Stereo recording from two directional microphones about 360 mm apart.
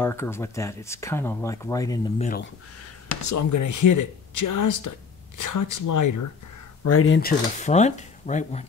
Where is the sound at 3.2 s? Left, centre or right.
Left.